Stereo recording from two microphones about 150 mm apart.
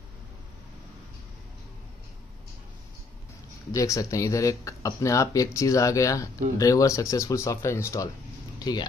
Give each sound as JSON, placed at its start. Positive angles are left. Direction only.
{"t": 3.7, "sound": "speech", "side_deg": 20}